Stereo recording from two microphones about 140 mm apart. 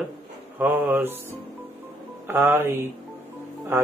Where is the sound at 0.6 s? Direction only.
15° right (ahead or behind).